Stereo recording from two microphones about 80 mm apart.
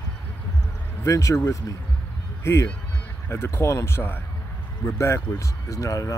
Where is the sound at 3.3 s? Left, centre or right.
Left.